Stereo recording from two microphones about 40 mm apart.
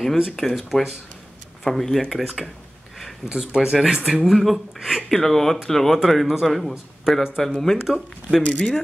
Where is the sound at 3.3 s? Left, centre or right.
Centre.